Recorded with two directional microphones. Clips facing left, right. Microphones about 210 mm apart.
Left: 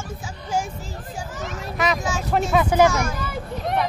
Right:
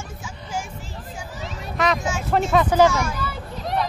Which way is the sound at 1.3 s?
50° left (ahead or behind).